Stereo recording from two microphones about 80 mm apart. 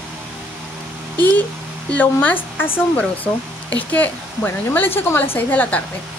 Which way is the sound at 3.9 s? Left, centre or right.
Centre.